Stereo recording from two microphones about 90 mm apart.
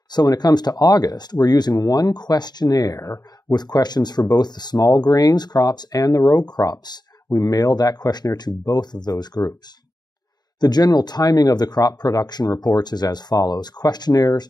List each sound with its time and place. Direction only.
0.1 s speech: 50° left (ahead or behind)
10.6 s speech: 50° left (ahead or behind)